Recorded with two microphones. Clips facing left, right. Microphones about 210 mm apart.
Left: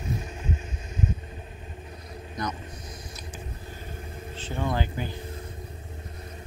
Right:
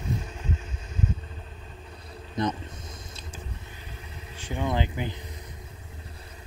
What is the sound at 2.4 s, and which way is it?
Vehicle, 30° right (ahead or behind).